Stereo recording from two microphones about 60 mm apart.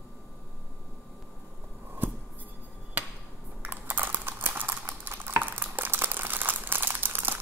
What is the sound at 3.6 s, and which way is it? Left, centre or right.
Boiling, right.